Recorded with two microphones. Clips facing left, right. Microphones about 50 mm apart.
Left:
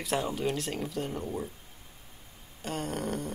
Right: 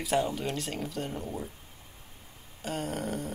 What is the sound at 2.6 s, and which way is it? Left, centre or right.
Speech, centre.